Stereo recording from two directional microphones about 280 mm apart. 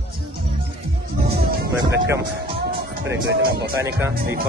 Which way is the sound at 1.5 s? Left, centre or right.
Right.